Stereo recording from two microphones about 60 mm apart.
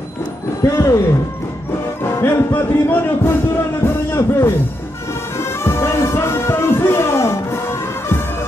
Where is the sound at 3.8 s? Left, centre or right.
Left.